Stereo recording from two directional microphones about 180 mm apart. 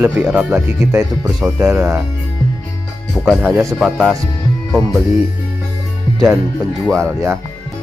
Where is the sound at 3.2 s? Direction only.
10° right (ahead or behind).